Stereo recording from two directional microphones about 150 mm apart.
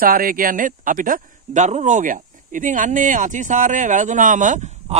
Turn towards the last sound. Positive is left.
turn(degrees=-55)  # may be behind; listen again after turning